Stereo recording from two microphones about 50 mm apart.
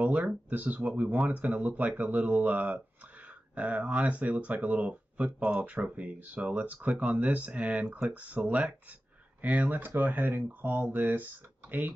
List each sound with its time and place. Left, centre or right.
0.5 s speech: right